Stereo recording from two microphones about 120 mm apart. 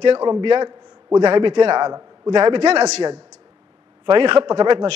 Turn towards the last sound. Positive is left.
turn(degrees=-40)  # may be behind; listen again after turning